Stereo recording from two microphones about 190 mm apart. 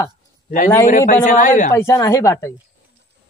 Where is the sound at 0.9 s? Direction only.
45° left (ahead or behind).